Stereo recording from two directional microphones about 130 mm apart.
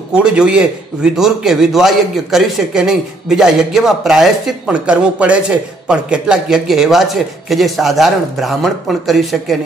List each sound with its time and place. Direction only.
0.1 s a man's voice: 5° right (ahead or behind)